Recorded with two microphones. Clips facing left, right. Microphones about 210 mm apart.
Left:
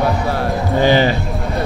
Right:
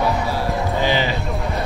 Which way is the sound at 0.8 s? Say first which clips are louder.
Left 8 dB; 50° left (ahead or behind).